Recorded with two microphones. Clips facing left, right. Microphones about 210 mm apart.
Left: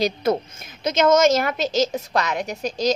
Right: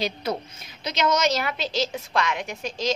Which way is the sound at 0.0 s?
50° left (ahead or behind).